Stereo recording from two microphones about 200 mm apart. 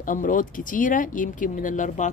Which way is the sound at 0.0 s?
40° left (ahead or behind).